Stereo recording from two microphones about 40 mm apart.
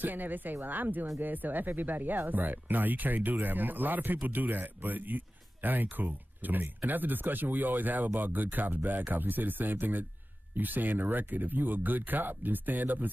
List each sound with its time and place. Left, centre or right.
0.0 s speech: right